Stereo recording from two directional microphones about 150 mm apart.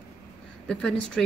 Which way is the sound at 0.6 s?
5° left (ahead or behind).